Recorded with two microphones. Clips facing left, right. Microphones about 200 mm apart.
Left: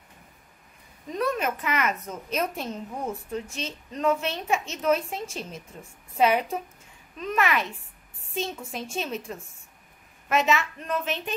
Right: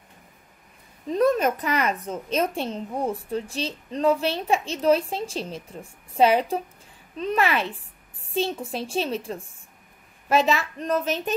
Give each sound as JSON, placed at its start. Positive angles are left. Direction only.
{"t": 1.1, "sound": "speech", "side_deg": -35}